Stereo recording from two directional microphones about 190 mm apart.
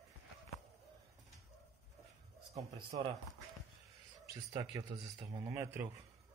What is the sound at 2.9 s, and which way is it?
Speech, 30° right (ahead or behind).